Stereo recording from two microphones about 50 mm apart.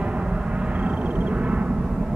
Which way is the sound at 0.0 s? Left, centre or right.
Right.